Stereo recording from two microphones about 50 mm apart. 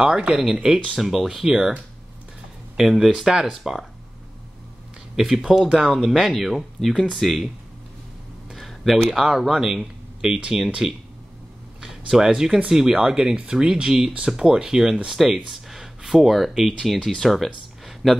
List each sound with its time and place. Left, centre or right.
0.0 s speech: centre
2.8 s speech: centre
5.1 s speech: centre
8.5 s a sound: centre
9.1 s speech: centre
11.8 s a sound: centre
12.6 s speech: centre